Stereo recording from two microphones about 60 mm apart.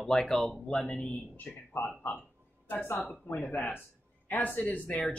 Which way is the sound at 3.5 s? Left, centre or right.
Left.